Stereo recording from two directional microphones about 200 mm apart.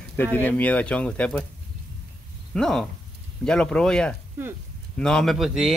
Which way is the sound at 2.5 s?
Centre (ahead or behind).